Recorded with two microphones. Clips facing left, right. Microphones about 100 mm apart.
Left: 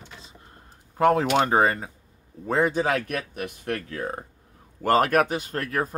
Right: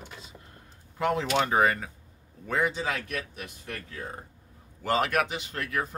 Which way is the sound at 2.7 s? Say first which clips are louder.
Left 7 dB; 55° left (ahead or behind).